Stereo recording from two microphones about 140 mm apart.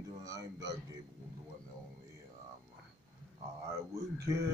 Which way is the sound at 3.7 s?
20° right (ahead or behind).